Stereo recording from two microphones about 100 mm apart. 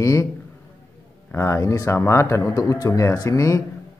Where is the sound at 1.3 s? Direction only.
25° left (ahead or behind).